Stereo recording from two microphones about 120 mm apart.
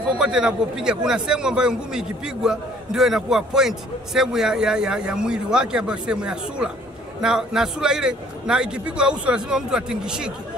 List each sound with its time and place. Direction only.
0.2 s a man's voice: 5° right (ahead or behind)